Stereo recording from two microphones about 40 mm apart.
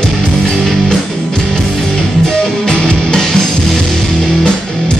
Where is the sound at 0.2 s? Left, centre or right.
Centre.